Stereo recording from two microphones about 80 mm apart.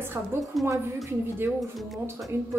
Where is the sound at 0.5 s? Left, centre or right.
Centre.